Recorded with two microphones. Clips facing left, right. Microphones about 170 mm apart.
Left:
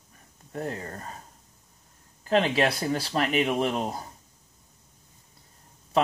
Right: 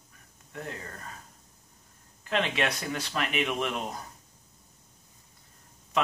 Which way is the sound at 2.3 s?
35° left (ahead or behind).